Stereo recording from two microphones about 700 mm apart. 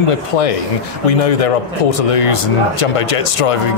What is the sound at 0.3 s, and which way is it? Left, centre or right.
A man's voice, left.